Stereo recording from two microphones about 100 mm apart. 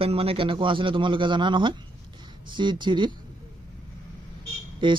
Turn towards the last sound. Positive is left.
turn(degrees=-55)  # may be behind; listen again after turning